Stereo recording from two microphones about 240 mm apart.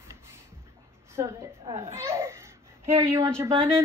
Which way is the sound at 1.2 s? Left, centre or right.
Centre.